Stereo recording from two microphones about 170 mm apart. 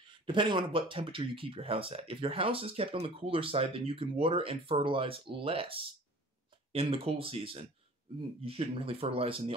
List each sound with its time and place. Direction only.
0.1 s speech: 30° right (ahead or behind)